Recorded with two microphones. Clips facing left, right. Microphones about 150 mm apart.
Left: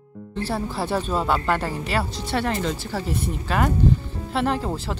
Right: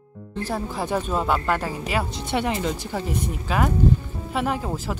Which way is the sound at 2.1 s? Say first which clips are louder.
Even; 20° right (ahead or behind).